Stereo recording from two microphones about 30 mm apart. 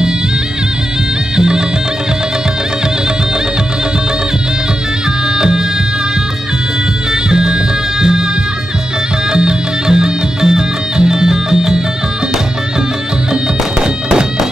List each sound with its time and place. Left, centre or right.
1.3 s music: right
5.3 s music: right
7.1 s music: right
9.3 s music: right
13.3 s bagpipes: right